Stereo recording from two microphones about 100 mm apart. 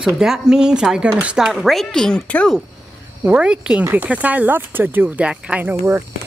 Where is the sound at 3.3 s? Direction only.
10° right (ahead or behind).